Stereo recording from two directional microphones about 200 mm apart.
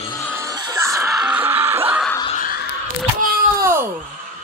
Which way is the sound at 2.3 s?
45° left (ahead or behind).